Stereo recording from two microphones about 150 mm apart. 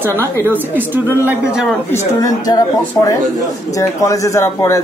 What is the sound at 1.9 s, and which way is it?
Speech, 25° left (ahead or behind).